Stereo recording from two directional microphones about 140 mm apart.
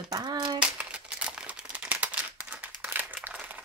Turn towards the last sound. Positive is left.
turn(degrees=-10)  # may be behind; listen again after turning